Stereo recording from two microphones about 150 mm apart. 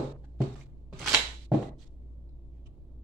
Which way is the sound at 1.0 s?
10° right (ahead or behind).